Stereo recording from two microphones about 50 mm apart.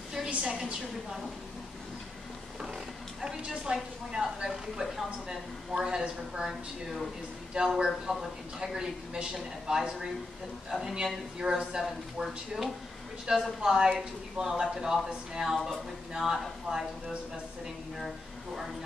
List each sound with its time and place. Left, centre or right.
0.3 s speech: centre
3.2 s speech: centre
7.5 s speech: centre
17.9 s speech: centre